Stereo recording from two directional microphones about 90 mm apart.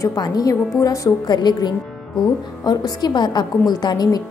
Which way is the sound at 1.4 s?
55° left (ahead or behind).